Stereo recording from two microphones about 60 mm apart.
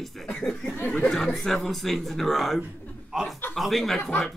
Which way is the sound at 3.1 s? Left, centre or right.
Centre.